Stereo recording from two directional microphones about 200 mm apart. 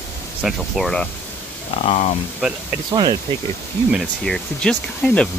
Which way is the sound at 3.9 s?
5° left (ahead or behind).